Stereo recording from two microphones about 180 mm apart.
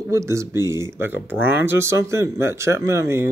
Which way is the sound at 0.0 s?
15° right (ahead or behind).